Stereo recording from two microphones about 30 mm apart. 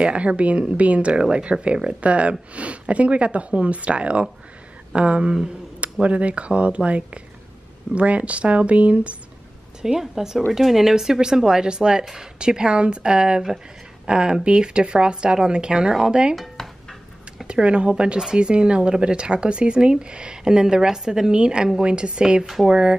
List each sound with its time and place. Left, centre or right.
0.0 s speech: right
9.9 s speech: centre
16.6 s a sound: centre
17.5 s speech: right
20.4 s speech: right
21.3 s speech: right